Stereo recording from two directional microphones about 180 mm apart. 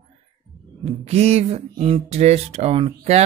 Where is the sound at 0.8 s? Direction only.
35° right (ahead or behind).